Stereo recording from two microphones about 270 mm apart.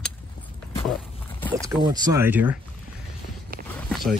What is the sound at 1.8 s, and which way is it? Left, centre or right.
Speech, centre.